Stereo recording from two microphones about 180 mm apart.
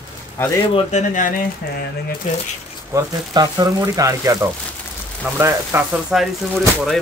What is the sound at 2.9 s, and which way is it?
Speech, 20° right (ahead or behind).